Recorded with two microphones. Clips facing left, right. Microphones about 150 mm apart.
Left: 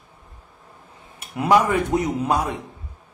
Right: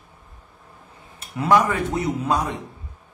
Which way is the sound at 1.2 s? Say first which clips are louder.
Left 1 dB; 15° left (ahead or behind).